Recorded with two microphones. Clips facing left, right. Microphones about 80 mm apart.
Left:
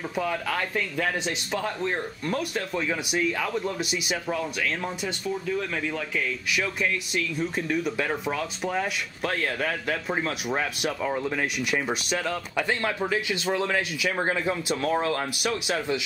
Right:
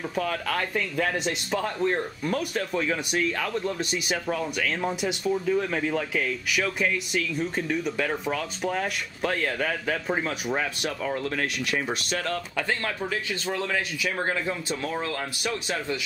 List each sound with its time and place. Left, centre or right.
0.1 s speech: centre
6.1 s speech: centre